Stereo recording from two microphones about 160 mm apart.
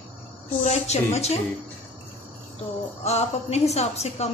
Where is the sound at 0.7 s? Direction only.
45° left (ahead or behind).